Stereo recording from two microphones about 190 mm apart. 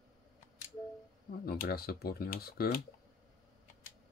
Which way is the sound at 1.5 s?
55° left (ahead or behind).